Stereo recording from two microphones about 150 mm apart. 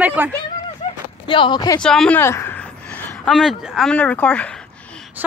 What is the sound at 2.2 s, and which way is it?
Speech, 15° left (ahead or behind).